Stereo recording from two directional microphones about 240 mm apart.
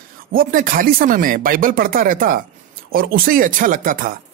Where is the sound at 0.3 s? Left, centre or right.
Right.